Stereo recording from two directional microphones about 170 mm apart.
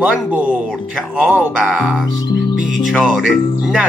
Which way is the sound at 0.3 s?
10° right (ahead or behind).